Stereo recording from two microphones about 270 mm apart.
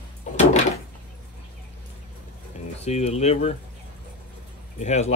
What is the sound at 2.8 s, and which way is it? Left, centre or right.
Speech, left.